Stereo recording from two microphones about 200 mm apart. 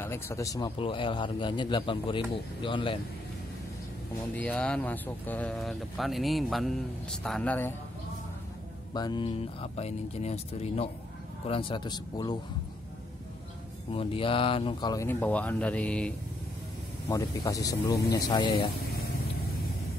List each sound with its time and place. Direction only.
0.0 s a man's voice: 10° left (ahead or behind)
4.4 s speech: 5° left (ahead or behind)
8.9 s a man's voice: 20° left (ahead or behind)
13.9 s speech: 25° left (ahead or behind); by 16.1 s 5° left (ahead or behind)
17.1 s speech: 15° left (ahead or behind)